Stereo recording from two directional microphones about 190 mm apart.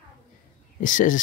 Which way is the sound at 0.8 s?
45° left (ahead or behind).